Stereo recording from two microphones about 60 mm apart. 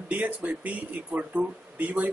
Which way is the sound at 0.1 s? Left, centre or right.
Right.